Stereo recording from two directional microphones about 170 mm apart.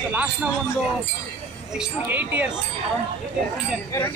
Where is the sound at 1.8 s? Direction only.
10° right (ahead or behind).